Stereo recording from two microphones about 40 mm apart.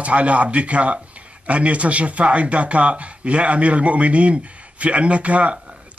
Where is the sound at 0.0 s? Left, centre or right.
Right.